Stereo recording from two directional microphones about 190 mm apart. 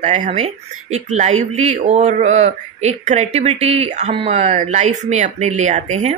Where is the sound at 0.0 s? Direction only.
35° right (ahead or behind).